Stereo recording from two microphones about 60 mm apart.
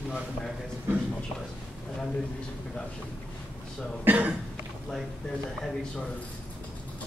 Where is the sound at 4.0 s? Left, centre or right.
Right.